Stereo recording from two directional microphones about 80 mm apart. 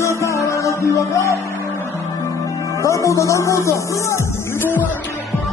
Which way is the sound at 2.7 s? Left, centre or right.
Left.